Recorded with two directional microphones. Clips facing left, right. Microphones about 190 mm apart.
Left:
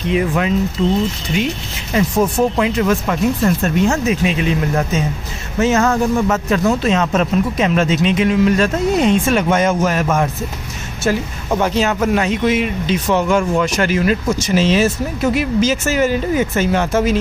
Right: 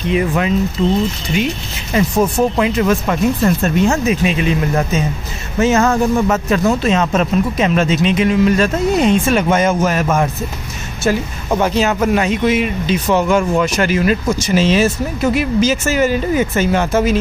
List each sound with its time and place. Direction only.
0.1 s speech: 5° right (ahead or behind)
2.0 s speech: 10° right (ahead or behind); by 4.0 s 25° right (ahead or behind)
4.0 s speech: 5° right (ahead or behind)
5.6 s speech: 20° right (ahead or behind)
6.8 s speech: centre (ahead or behind)